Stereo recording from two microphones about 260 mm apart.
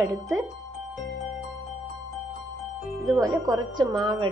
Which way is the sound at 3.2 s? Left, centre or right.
Centre.